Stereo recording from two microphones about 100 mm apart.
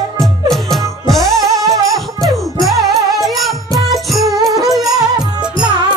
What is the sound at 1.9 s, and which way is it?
Music, centre (ahead or behind).